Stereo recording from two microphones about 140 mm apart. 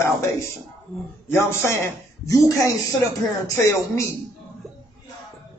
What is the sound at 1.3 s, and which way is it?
Speech, 20° left (ahead or behind).